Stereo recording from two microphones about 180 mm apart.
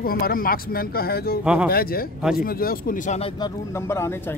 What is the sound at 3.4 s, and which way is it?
Speech, 25° left (ahead or behind).